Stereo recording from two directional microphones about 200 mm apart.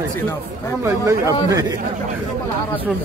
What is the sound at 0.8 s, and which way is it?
Speech, 15° right (ahead or behind).